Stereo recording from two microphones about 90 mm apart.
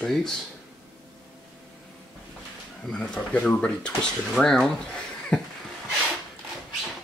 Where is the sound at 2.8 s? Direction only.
10° left (ahead or behind).